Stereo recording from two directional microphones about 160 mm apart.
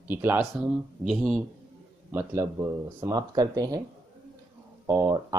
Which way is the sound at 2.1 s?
20° right (ahead or behind).